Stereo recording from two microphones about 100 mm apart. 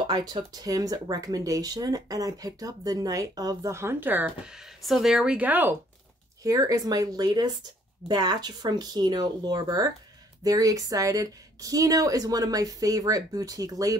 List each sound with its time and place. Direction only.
0.0 s speech: 45° right (ahead or behind)
3.7 s speech: 20° right (ahead or behind)
4.5 s speech: 5° right (ahead or behind); by 5.8 s 20° right (ahead or behind)
6.4 s speech: 35° right (ahead or behind)